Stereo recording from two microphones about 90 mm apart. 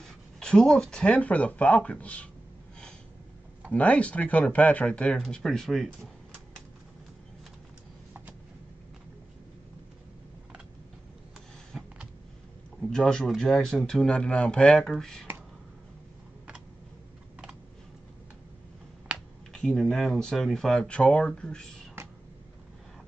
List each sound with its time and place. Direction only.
0.0 s speech: 10° left (ahead or behind)
3.7 s speech: 15° left (ahead or behind)
11.7 s a sound: centre (ahead or behind)
12.8 s speech: 5° left (ahead or behind)
19.1 s speech: 5° left (ahead or behind)
22.0 s a sound: 30° right (ahead or behind)